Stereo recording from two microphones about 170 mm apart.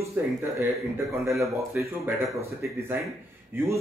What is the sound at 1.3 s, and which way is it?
Speech, 15° right (ahead or behind).